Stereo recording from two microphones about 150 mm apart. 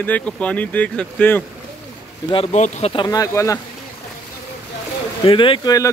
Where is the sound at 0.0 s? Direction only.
10° left (ahead or behind).